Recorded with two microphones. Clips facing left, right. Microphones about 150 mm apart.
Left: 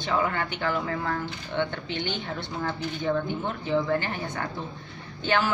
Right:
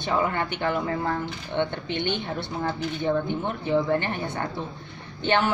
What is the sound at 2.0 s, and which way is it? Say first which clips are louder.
Speech: right 4 dB; 60° right (ahead or behind).